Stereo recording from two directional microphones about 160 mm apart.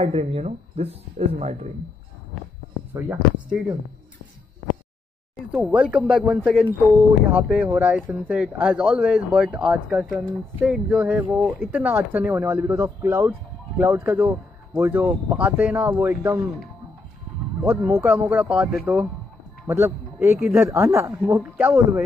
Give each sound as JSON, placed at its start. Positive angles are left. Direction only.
{"t": 0.0, "sound": "speech", "side_deg": -40}
{"t": 2.9, "sound": "speech", "side_deg": -10}
{"t": 5.5, "sound": "speech", "side_deg": -5}
{"t": 17.6, "sound": "speech", "side_deg": -15}